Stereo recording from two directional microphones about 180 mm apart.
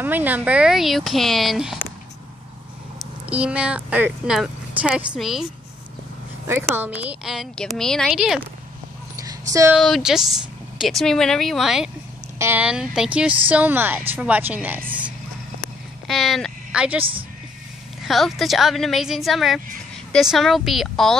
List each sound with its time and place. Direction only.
0.0 s a woman's voice: 10° right (ahead or behind)
3.0 s speech: 5° right (ahead or behind)
6.4 s a woman's voice: 10° right (ahead or behind)
9.5 s speech: 15° right (ahead or behind)
9.8 s a woman's voice: centre (ahead or behind)
14.9 s vehicle: 10° right (ahead or behind)
16.1 s speech: centre (ahead or behind)
18.0 s a woman's voice: centre (ahead or behind)